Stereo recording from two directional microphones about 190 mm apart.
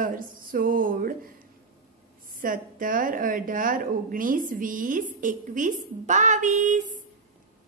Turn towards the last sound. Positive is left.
turn(degrees=-40)  # may be behind; listen again after turning